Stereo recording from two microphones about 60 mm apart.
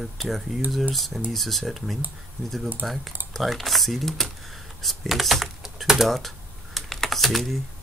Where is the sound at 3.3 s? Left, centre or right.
Centre.